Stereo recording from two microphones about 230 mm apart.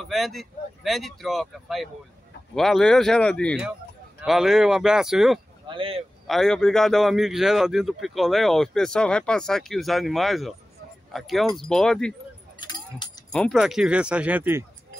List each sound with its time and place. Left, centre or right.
0.0 s a man's voice: centre
5.7 s speech: right
6.2 s a man's voice: centre
12.5 s keys jangling: centre
13.3 s a man's voice: centre